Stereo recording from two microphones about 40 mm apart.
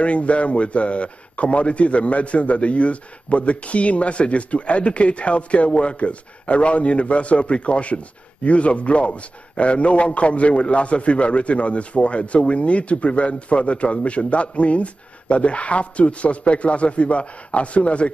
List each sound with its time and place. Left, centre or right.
0.0 s a man's voice: left